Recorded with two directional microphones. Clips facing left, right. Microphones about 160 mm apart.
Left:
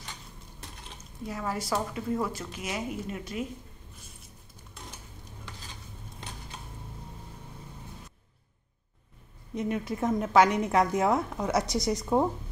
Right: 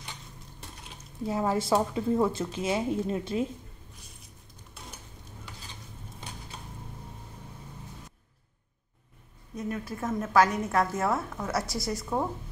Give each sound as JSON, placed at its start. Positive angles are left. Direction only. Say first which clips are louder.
{"t": 1.2, "sound": "a woman's voice", "louder": "right 6 dB", "side_deg": -25}
{"t": 9.6, "sound": "a woman's voice", "louder": "left 4 dB", "side_deg": 20}